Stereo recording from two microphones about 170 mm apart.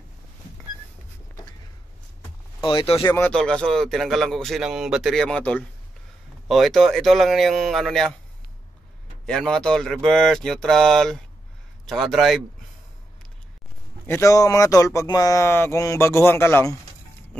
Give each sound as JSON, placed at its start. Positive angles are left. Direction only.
{"t": 2.6, "sound": "speech", "side_deg": 30}
{"t": 3.1, "sound": "speech", "side_deg": 15}
{"t": 9.2, "sound": "speech", "side_deg": 5}
{"t": 14.0, "sound": "speech", "side_deg": 15}